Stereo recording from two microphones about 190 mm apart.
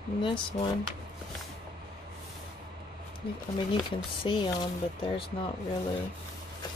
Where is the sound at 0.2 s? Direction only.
25° left (ahead or behind).